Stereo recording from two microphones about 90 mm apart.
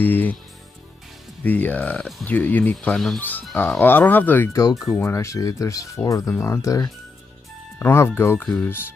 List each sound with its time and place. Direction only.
0.0 s speech: 20° left (ahead or behind)
1.4 s speech: 20° left (ahead or behind)
3.2 s speech: 20° left (ahead or behind)
4.5 s speech: 40° left (ahead or behind)
8.4 s speech: 15° left (ahead or behind)